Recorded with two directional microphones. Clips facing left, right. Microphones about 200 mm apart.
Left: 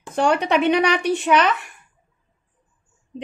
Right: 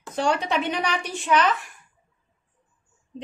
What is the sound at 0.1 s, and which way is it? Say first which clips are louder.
A woman's voice: left 5 dB; 55° left (ahead or behind).